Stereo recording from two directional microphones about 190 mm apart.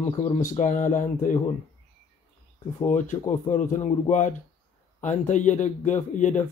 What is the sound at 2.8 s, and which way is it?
Speech, 40° left (ahead or behind).